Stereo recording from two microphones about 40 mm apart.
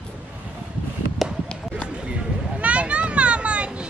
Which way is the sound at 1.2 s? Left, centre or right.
Centre.